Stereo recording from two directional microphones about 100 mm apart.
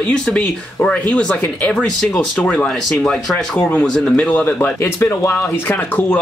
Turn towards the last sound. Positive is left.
turn(degrees=20)  # may be behind; listen again after turning